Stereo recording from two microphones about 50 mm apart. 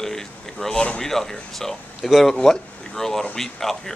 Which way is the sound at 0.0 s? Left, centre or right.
Centre.